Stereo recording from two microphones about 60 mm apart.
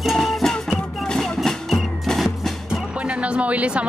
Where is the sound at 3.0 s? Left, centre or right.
Right.